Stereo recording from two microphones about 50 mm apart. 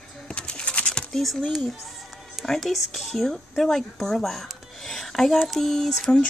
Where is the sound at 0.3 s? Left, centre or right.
Centre.